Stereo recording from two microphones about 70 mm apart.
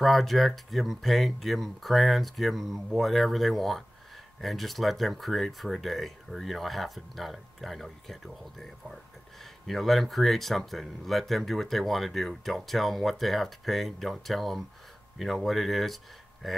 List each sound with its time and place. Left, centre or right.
0.0 s speech: centre